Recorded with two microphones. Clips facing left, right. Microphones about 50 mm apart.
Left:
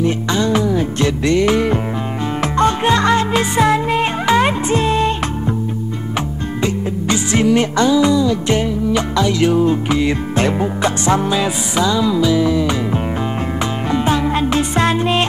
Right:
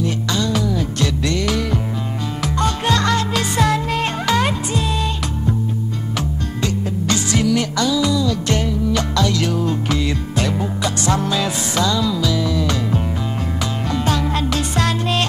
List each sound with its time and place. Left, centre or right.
0.0 s music: left
4.6 s music: left
6.6 s music: left